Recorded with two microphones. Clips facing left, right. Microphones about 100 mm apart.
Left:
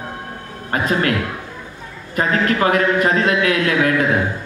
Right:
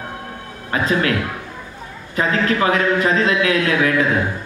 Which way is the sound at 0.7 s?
45° left (ahead or behind).